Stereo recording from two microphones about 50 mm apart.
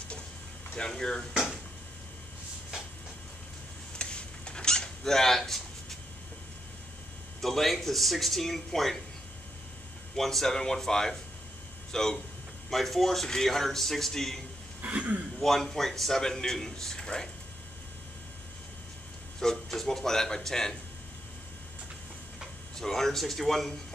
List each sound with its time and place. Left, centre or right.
0.7 s a man's voice: centre
4.0 s a sound: centre
7.4 s a man's voice: centre
10.1 s a man's voice: centre
14.8 s a sound: right
15.3 s a man's voice: centre
19.4 s a man's voice: centre
22.8 s a man's voice: centre